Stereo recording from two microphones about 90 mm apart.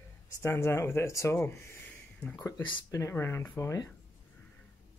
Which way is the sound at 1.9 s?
15° left (ahead or behind).